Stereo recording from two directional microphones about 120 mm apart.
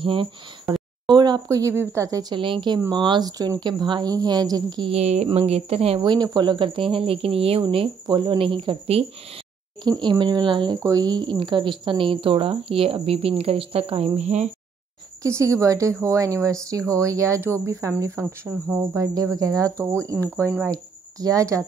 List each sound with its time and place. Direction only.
0.0 s speech: 45° right (ahead or behind); by 2.3 s 30° right (ahead or behind)
2.3 s speech: 45° right (ahead or behind)
4.9 s speech: 65° right (ahead or behind)
5.9 s speech: 35° right (ahead or behind); by 9.0 s 50° right (ahead or behind)
9.8 s speech: 40° right (ahead or behind)
10.8 s speech: 30° right (ahead or behind); by 14.5 s 70° right (ahead or behind)
15.2 s speech: 25° right (ahead or behind)